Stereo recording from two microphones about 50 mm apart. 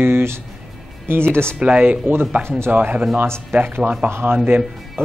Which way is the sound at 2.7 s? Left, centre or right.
Right.